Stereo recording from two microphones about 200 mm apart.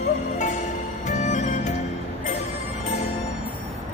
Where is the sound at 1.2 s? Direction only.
35° left (ahead or behind).